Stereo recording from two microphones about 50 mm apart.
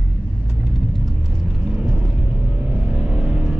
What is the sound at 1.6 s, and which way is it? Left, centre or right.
Rumble, centre.